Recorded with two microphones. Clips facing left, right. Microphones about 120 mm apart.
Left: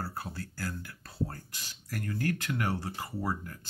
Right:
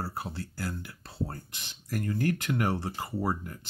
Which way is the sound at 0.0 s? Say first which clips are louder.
Right 2 dB; 25° right (ahead or behind).